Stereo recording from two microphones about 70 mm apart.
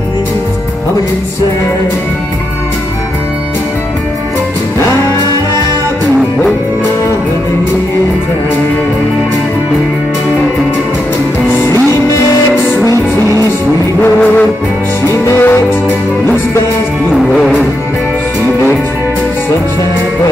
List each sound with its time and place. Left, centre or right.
15.3 s music: left
17.1 s music: centre